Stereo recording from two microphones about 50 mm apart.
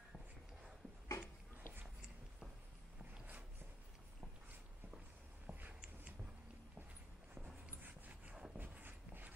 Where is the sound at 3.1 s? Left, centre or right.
Right.